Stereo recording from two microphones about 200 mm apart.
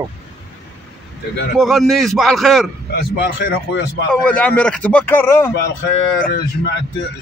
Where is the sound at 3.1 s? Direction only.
55° left (ahead or behind).